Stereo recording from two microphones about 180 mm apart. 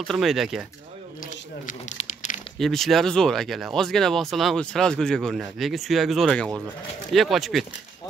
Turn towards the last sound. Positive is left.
turn(degrees=0)  # may be behind; listen again after turning